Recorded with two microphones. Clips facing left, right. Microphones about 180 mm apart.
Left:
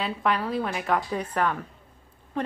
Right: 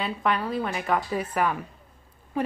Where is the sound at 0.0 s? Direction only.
Centre (ahead or behind).